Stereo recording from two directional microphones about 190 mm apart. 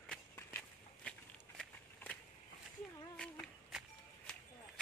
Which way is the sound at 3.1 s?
5° left (ahead or behind).